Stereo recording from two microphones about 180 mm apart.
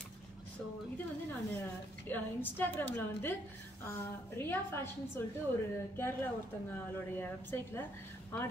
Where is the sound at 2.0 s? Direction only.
10° left (ahead or behind).